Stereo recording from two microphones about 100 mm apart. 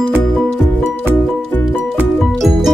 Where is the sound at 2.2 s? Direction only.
Centre (ahead or behind).